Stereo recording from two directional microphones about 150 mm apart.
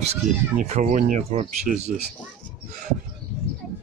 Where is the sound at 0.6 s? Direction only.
55° right (ahead or behind).